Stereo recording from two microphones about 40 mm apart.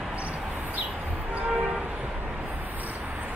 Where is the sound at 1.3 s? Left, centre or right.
Right.